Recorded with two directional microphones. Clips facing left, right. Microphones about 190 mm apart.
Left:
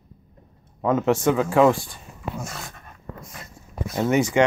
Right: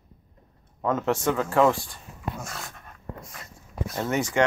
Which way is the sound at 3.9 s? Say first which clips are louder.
Left 6 dB; 15° left (ahead or behind).